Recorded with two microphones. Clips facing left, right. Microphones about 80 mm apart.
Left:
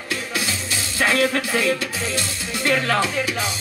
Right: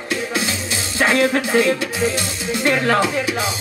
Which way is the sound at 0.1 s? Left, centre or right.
Right.